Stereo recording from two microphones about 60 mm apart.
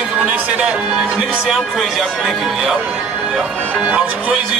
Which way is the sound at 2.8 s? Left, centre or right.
Centre.